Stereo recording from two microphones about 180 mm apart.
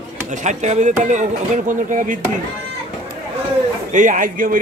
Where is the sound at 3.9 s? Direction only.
45° right (ahead or behind).